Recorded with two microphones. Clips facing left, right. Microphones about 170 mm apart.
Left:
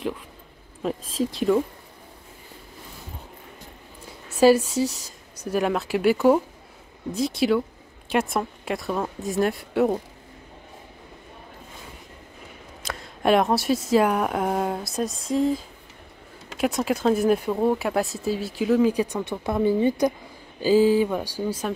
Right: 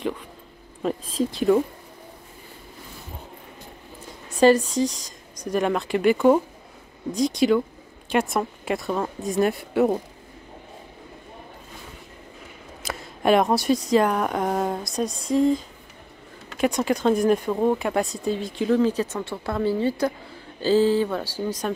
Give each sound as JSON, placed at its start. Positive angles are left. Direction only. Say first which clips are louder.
{"t": 0.8, "sound": "speech", "louder": "right 1 dB", "side_deg": 0}
{"t": 4.4, "sound": "speech", "louder": "even", "side_deg": 10}
{"t": 12.8, "sound": "speech", "louder": "right 1 dB", "side_deg": 0}